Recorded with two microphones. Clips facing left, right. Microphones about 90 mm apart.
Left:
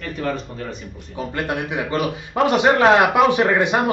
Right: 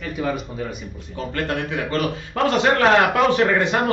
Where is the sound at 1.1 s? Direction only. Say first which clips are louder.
Left 1 dB; 15° left (ahead or behind).